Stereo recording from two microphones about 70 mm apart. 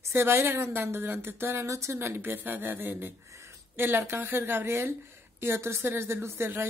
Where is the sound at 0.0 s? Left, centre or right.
Right.